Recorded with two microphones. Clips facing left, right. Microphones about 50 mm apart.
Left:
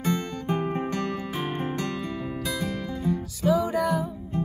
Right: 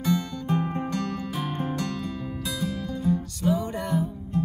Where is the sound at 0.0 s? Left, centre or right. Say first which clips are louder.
Right 1 dB; left.